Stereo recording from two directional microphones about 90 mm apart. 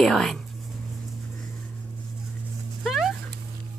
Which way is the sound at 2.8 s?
Centre (ahead or behind).